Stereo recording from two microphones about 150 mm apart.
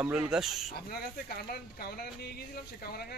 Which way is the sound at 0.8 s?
90° left.